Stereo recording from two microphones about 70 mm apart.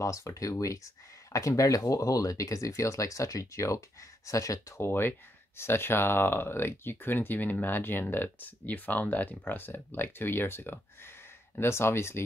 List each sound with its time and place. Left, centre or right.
0.0 s speech: left
4.8 s speech: left